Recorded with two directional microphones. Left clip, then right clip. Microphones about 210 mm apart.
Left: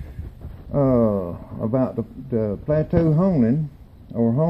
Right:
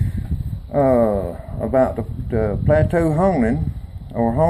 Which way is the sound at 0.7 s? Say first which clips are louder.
Right 4 dB; 20° left (ahead or behind).